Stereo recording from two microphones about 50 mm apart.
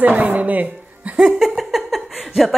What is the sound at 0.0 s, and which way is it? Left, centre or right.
Music, right.